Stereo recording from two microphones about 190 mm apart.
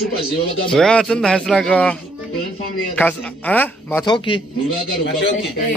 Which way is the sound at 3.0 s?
10° left (ahead or behind).